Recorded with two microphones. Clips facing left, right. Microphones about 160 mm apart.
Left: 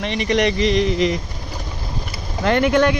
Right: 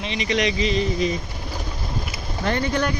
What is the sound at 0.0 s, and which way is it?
Speech, 55° left (ahead or behind).